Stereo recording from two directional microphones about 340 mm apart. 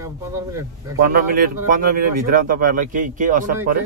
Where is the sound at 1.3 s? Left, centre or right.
Right.